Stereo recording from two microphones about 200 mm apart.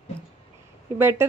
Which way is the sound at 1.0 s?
10° right (ahead or behind).